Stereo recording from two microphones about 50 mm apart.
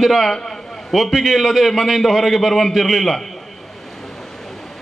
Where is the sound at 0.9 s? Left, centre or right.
Centre.